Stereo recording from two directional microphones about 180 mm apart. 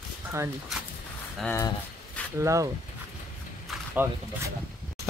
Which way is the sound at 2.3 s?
15° right (ahead or behind).